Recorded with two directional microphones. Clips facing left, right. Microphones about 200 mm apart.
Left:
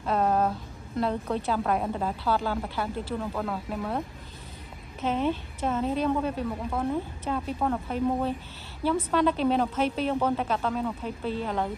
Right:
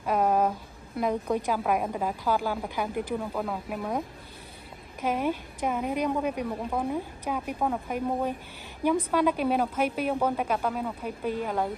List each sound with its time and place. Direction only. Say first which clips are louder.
0.0 s a woman's voice: even; 10° right (ahead or behind)
5.0 s a woman's voice: left 1 dB; 10° right (ahead or behind)